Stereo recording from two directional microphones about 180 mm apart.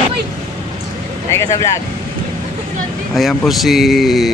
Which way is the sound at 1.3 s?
15° left (ahead or behind).